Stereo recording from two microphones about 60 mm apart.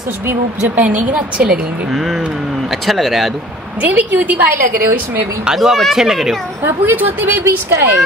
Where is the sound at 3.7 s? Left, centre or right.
Right.